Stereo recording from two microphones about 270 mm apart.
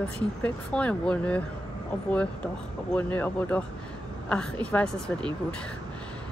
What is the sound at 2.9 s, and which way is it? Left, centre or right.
Speech, centre.